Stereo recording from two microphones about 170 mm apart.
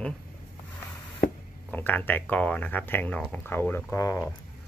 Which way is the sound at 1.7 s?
10° left (ahead or behind).